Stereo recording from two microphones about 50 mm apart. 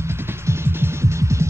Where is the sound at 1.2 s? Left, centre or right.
Right.